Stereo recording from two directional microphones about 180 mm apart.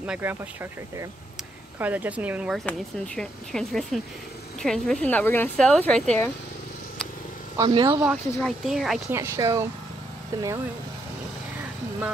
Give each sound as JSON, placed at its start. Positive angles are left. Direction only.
{"t": 0.0, "sound": "speech", "side_deg": -10}
{"t": 7.5, "sound": "speech", "side_deg": -25}
{"t": 8.0, "sound": "speech", "side_deg": 0}
{"t": 9.1, "sound": "speech", "side_deg": -15}